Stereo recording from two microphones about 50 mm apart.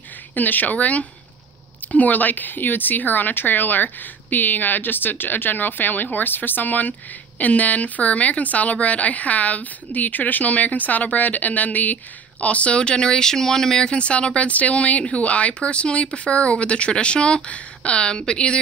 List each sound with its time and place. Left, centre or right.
0.3 s a woman's voice: left; by 18.6 s centre